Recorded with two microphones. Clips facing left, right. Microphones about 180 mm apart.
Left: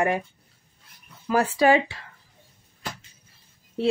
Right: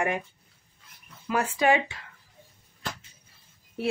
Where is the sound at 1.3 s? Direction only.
35° left (ahead or behind).